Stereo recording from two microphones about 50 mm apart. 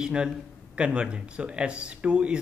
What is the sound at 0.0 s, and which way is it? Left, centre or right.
Speech, centre.